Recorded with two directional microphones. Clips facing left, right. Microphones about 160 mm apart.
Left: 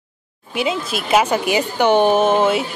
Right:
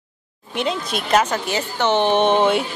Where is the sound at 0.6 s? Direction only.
5° left (ahead or behind).